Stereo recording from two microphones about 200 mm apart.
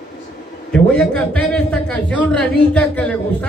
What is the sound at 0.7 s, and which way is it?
A man's voice, 5° left (ahead or behind).